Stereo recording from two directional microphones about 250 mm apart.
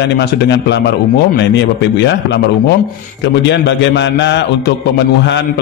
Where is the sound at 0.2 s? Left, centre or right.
Left.